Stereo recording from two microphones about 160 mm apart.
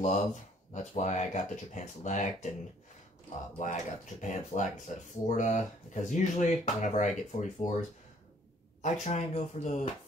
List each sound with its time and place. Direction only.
0.0 s speech: 45° left (ahead or behind)
3.5 s speech: 50° left (ahead or behind)
8.8 s speech: 50° left (ahead or behind)